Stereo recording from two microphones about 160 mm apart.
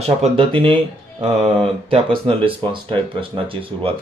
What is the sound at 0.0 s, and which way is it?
Speech, 35° right (ahead or behind).